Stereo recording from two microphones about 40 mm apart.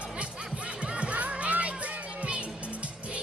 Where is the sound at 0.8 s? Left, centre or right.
Right.